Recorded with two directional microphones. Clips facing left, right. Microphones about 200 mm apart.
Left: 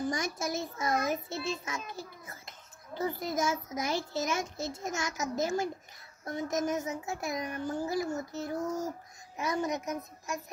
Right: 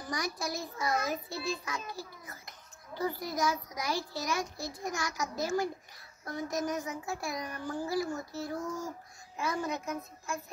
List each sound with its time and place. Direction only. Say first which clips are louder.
0.1 s a child's voice: left 2 dB; 25° left (ahead or behind)